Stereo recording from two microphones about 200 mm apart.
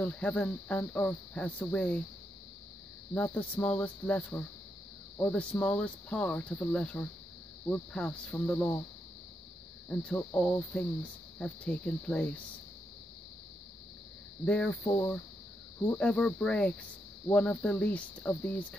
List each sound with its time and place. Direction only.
0.0 s speech: 10° left (ahead or behind)
3.2 s speech: 10° left (ahead or behind)
9.8 s speech: 5° left (ahead or behind)
14.4 s speech: 5° left (ahead or behind)
14.9 s speech: 15° left (ahead or behind)
15.9 s speech: 5° left (ahead or behind)